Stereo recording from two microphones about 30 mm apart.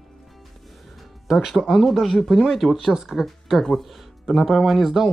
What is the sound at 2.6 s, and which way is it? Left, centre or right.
Speech, left.